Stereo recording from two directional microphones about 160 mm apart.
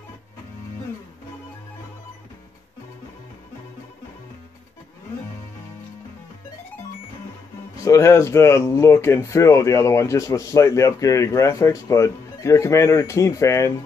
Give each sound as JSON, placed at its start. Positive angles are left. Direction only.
{"t": 7.7, "sound": "speech", "side_deg": 20}